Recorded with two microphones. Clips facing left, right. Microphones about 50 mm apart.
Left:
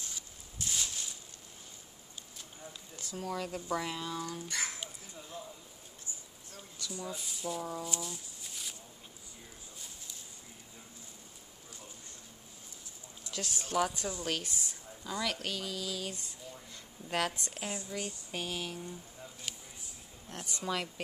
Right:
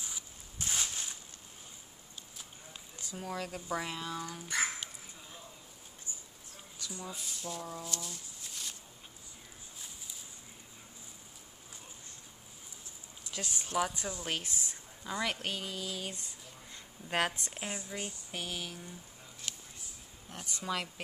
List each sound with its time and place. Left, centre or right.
0.6 s a sound: right
3.0 s speech: centre
3.3 s speech: centre
6.8 s speech: centre
8.0 s a sound: centre
13.3 s speech: right; by 14.2 s centre
14.2 s speech: right
20.2 s speech: centre